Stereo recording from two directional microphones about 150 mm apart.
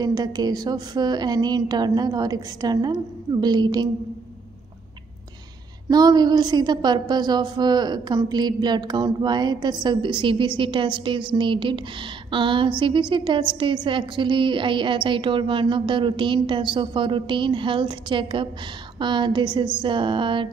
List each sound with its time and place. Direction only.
0.0 s a woman's voice: 25° right (ahead or behind)
5.9 s a woman's voice: 25° right (ahead or behind)